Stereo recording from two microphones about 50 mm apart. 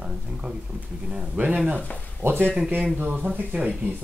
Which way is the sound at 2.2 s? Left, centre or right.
Right.